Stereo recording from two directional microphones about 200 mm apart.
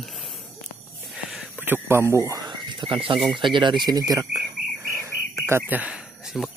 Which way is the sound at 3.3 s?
25° right (ahead or behind).